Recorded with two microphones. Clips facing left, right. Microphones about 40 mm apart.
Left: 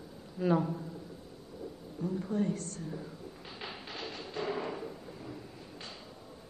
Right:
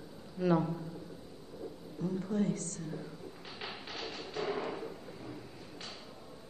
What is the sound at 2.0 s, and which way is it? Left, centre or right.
Speech, left.